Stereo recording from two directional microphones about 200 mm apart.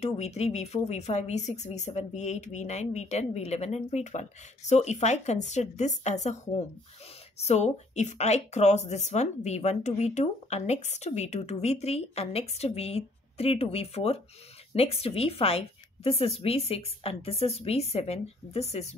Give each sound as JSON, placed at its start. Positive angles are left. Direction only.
{"t": 0.0, "sound": "a woman's voice", "side_deg": 35}